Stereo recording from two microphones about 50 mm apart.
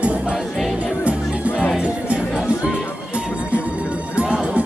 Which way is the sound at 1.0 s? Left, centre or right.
Right.